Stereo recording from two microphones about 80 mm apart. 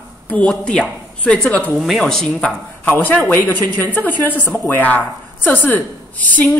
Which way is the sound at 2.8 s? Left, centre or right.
Left.